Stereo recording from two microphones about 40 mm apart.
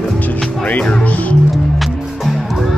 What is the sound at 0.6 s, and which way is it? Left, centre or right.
Music, left.